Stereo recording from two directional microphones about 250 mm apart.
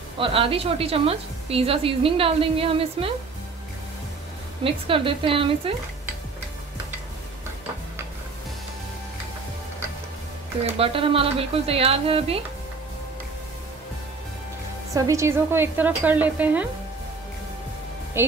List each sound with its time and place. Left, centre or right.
0.2 s a woman's voice: right
4.6 s a woman's voice: right
10.8 s a woman's voice: right
15.0 s speech: centre
18.2 s speech: centre